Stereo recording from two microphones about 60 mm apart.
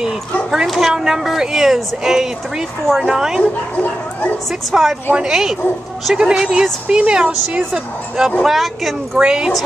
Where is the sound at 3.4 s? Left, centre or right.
Left.